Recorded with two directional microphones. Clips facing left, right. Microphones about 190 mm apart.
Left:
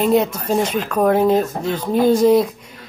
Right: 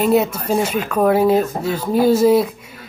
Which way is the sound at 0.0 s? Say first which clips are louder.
Even; 5° right (ahead or behind).